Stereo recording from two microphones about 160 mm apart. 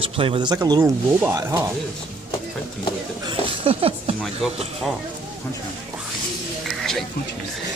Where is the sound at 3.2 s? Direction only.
35° right (ahead or behind).